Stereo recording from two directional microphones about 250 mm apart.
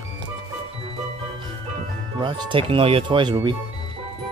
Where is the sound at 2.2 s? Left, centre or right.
Centre.